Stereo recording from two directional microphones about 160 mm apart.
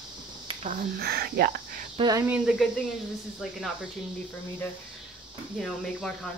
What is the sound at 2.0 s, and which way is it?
Speech, 25° right (ahead or behind).